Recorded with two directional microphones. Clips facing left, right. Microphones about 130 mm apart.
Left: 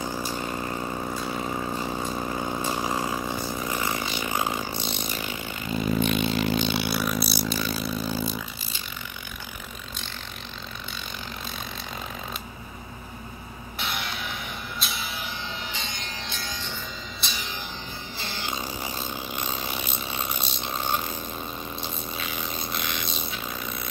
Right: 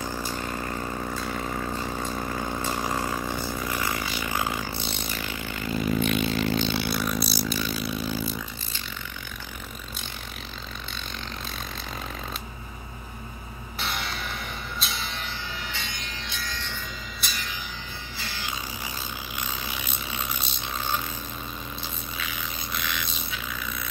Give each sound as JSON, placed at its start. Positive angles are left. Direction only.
{"t": 0.0, "sound": "vehicle", "side_deg": 15}
{"t": 7.4, "sound": "a sound", "side_deg": 40}
{"t": 13.7, "sound": "music", "side_deg": 0}
{"t": 15.8, "sound": "music", "side_deg": 30}
{"t": 17.2, "sound": "music", "side_deg": 0}
{"t": 18.1, "sound": "music", "side_deg": 25}
{"t": 19.3, "sound": "a sound", "side_deg": 25}
{"t": 20.7, "sound": "burping", "side_deg": 30}
{"t": 22.1, "sound": "a sound", "side_deg": 30}